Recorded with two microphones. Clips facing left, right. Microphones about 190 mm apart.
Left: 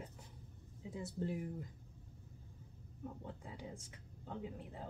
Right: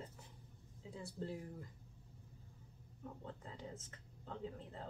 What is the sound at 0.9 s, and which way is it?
Speech, 20° left (ahead or behind).